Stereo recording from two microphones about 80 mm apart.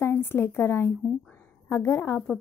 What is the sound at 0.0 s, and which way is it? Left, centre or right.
A woman's voice, left.